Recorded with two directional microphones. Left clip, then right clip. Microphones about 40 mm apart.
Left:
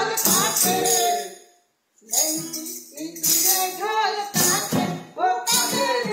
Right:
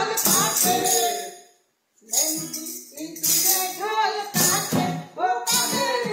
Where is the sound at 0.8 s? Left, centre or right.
Left.